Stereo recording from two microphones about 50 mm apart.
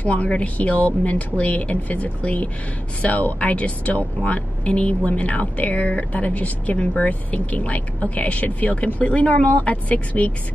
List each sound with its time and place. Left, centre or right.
0.0 s speech: left